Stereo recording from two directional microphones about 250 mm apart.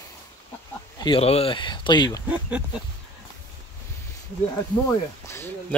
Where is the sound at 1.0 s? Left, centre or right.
Left.